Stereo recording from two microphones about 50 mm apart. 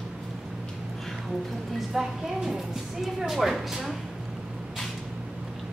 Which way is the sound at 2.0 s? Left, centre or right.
Centre.